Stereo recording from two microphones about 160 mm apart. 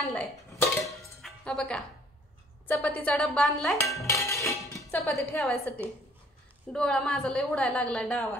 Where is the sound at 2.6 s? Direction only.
10° left (ahead or behind).